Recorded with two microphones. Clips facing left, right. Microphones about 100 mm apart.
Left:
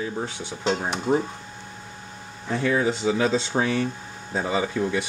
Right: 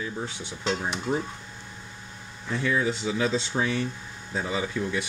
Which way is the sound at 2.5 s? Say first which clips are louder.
Left 3 dB; 40° left (ahead or behind).